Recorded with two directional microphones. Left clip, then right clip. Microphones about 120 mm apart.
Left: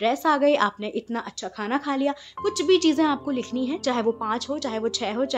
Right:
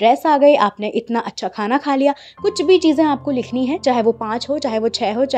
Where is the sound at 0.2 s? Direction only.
35° right (ahead or behind); by 1.1 s 50° right (ahead or behind).